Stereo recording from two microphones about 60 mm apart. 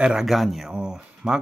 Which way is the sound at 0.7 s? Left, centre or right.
Centre.